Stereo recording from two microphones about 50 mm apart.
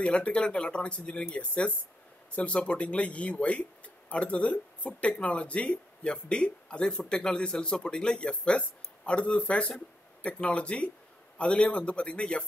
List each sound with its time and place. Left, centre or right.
0.0 s speech: left